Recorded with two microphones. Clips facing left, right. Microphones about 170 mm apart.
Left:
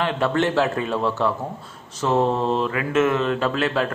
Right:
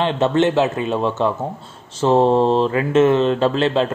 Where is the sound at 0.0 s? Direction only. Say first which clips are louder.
Right 5 dB; 25° right (ahead or behind).